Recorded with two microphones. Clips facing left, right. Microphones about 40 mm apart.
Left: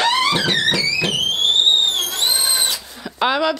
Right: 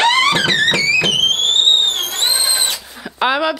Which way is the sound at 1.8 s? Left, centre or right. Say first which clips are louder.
Right 1 dB; right.